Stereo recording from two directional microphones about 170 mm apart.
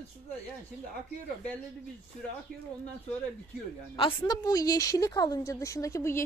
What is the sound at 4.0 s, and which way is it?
A woman's voice, 25° left (ahead or behind).